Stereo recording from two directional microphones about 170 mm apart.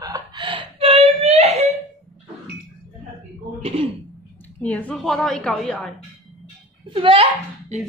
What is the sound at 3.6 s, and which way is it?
Throat clearing, 35° right (ahead or behind).